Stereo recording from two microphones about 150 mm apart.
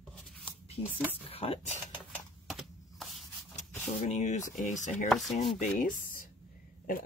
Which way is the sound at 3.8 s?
55° left (ahead or behind).